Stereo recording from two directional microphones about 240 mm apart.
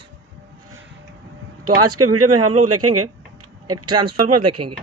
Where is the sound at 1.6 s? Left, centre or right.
Right.